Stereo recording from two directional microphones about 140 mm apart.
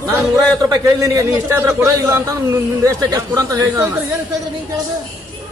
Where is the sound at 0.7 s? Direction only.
20° right (ahead or behind).